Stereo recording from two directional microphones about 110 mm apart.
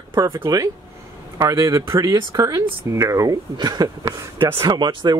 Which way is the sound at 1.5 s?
30° right (ahead or behind).